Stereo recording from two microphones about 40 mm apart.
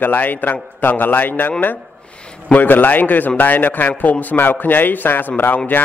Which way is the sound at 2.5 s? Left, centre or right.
Left.